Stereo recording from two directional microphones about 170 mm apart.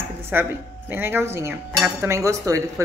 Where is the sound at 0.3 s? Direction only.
10° right (ahead or behind).